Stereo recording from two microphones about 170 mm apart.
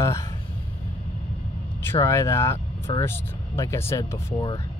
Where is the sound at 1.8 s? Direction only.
15° left (ahead or behind).